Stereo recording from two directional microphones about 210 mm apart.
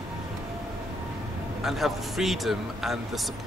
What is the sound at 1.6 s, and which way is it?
A man's voice, centre (ahead or behind).